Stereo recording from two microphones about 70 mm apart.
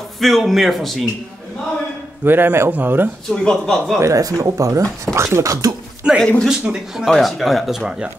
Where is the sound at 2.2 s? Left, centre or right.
Right.